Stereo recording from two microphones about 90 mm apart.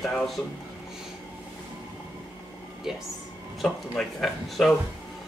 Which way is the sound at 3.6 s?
Centre (ahead or behind).